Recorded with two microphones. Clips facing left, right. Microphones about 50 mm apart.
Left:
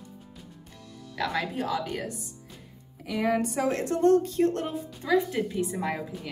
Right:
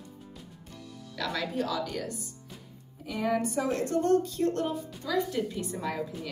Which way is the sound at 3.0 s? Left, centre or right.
Left.